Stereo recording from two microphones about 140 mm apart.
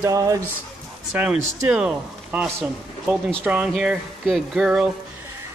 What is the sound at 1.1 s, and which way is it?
Speech, 10° right (ahead or behind).